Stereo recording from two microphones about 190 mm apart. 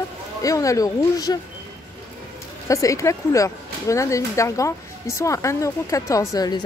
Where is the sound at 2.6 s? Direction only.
15° left (ahead or behind).